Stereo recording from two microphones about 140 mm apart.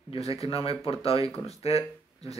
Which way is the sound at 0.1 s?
45° left (ahead or behind).